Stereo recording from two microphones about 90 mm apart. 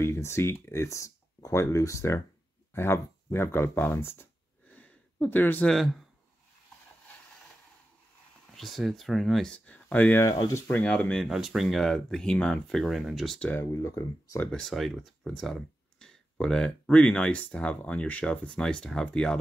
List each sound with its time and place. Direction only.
0.0 s speech: 30° left (ahead or behind)
8.5 s speech: centre (ahead or behind)
11.2 s speech: 5° right (ahead or behind)
13.4 s speech: 20° left (ahead or behind)
13.7 s speech: 35° left (ahead or behind)
14.5 s speech: 5° left (ahead or behind)